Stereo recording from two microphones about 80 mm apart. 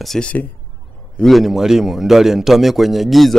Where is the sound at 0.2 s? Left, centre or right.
Centre.